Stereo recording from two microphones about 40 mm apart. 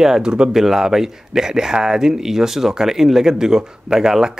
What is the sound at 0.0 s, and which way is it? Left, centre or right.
A man's voice, centre.